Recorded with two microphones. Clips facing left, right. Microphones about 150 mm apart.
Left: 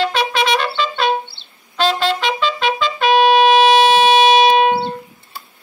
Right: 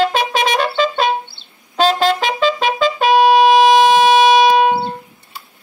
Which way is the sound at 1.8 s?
40° right (ahead or behind).